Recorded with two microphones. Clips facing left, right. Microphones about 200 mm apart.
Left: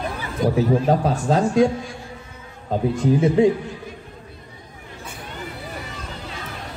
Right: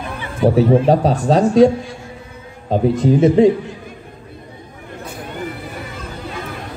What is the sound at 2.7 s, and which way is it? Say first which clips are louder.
Speech: right 5 dB; 30° right (ahead or behind).